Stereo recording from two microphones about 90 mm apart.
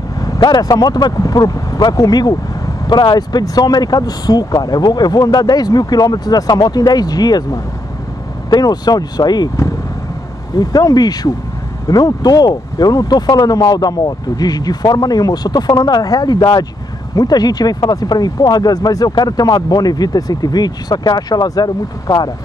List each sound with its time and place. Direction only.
0.4 s speech: 50° left (ahead or behind)
10.6 s speech: 45° left (ahead or behind)